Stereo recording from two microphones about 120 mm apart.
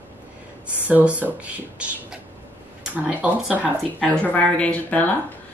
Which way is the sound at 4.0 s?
10° left (ahead or behind).